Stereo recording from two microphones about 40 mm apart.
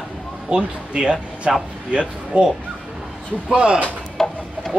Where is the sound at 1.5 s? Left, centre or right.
Centre.